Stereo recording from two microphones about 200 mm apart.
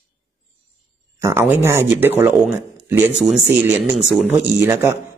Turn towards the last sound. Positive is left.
turn(degrees=-10)  # may be behind; listen again after turning